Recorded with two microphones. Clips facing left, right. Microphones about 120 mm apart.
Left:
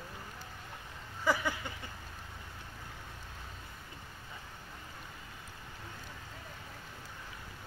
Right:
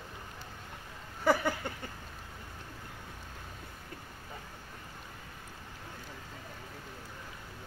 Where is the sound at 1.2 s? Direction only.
50° right (ahead or behind).